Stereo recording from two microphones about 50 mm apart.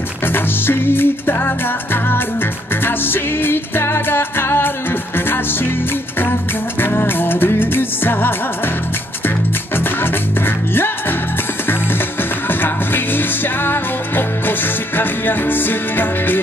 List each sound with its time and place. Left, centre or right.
0.3 s music: left
2.8 s music: left
6.8 s music: left
10.7 s music: left
12.4 s music: left
15.0 s music: left